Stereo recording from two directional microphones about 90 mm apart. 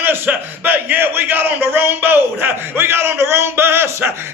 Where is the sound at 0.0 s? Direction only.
20° right (ahead or behind).